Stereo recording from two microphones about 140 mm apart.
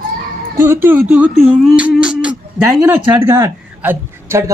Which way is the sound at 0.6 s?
15° right (ahead or behind).